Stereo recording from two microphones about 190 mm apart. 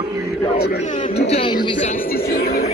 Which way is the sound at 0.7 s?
40° left (ahead or behind).